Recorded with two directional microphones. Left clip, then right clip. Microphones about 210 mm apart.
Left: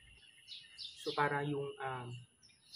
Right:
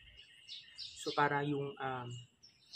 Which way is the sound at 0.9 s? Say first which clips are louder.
Right 2 dB; 20° right (ahead or behind).